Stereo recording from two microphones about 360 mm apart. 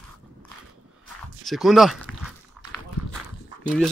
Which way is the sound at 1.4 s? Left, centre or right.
Centre.